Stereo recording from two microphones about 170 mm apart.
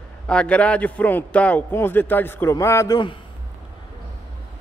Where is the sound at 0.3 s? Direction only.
5° left (ahead or behind); by 3.2 s 25° left (ahead or behind).